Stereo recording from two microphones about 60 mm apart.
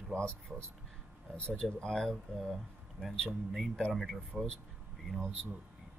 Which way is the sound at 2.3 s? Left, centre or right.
Centre.